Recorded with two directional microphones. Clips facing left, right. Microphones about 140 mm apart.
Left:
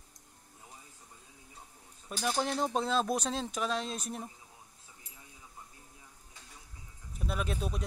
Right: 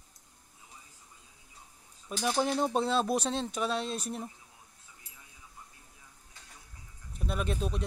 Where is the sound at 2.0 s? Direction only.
Centre (ahead or behind).